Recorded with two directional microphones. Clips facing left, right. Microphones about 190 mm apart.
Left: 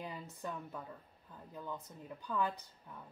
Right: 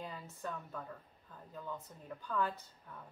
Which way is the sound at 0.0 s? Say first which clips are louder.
Even; 15° left (ahead or behind).